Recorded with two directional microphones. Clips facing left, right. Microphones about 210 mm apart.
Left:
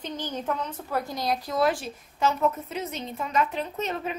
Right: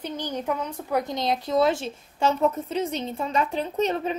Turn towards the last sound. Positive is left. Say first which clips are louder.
# right 6 dB
turn(degrees=-30)  # may be behind; listen again after turning